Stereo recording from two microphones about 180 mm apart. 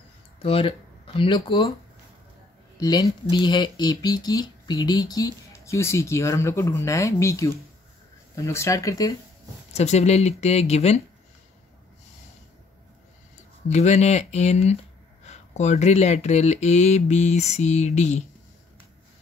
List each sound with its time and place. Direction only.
0.4 s speech: 30° left (ahead or behind)
2.8 s speech: 20° left (ahead or behind)
9.7 s speech: 35° left (ahead or behind)
13.7 s speech: 40° left (ahead or behind)